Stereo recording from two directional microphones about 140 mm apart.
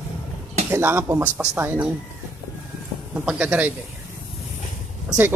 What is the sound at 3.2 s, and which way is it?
Speech, 10° right (ahead or behind).